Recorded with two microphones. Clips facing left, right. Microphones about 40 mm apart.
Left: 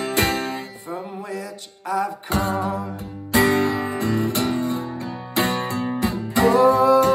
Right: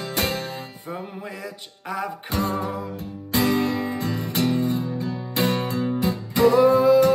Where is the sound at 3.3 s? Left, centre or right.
Left.